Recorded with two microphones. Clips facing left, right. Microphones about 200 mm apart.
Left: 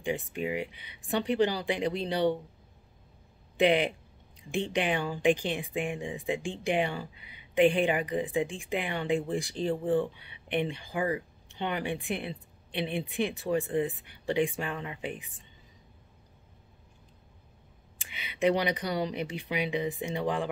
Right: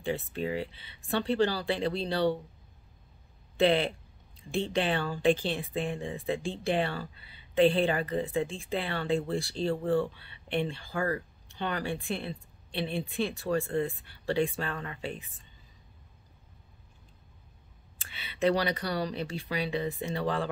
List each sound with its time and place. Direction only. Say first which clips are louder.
0.0 s speech: even; 15° left (ahead or behind)
3.5 s speech: left 1 dB; 15° left (ahead or behind)
17.9 s speech: left 2 dB; 15° left (ahead or behind)